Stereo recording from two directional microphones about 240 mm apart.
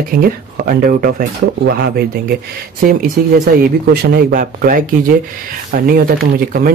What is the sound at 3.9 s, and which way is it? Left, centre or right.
Speech, right.